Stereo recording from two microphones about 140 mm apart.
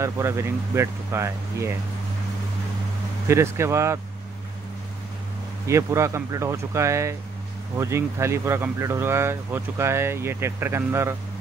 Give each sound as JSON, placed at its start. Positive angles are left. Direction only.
{"t": 0.0, "sound": "speech", "side_deg": -20}
{"t": 3.3, "sound": "speech", "side_deg": -20}
{"t": 5.7, "sound": "speech", "side_deg": -20}